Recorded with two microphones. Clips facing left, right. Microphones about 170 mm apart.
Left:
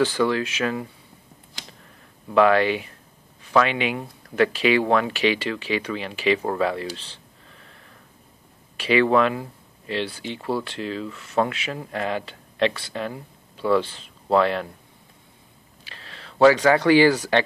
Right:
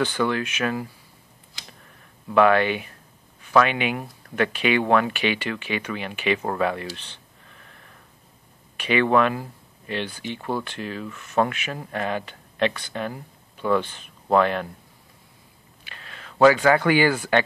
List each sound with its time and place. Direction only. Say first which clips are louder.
0.0 s speech: left 2 dB; 30° left (ahead or behind)
2.3 s speech: even; 30° left (ahead or behind)
8.7 s speech: left 1 dB; 30° left (ahead or behind)
15.8 s speech: even; 30° left (ahead or behind)